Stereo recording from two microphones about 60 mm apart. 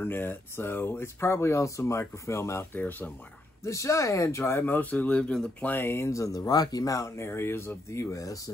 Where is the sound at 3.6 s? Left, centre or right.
Left; by 5.6 s centre.